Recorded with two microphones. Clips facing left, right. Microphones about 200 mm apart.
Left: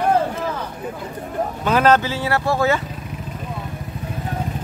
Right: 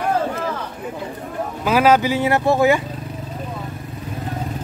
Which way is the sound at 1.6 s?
5° right (ahead or behind).